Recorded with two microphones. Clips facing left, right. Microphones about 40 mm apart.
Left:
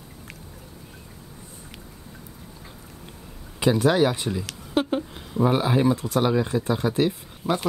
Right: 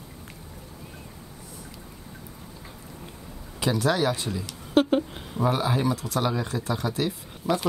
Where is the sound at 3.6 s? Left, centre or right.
Left.